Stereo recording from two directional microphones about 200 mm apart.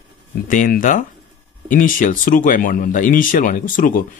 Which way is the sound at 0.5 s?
45° left (ahead or behind).